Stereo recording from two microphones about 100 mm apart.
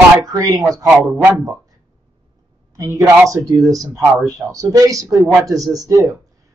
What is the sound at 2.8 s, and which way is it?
A woman's voice, 35° right (ahead or behind).